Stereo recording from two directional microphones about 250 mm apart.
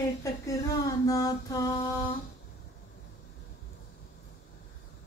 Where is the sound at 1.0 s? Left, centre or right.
Centre.